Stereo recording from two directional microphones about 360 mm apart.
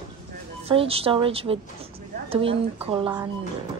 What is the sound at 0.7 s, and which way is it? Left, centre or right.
Speech, centre.